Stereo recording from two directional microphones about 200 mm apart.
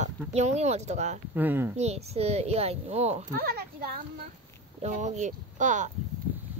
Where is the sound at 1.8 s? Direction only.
30° right (ahead or behind).